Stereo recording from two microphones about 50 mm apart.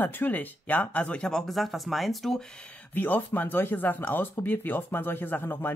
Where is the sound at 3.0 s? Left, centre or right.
Left.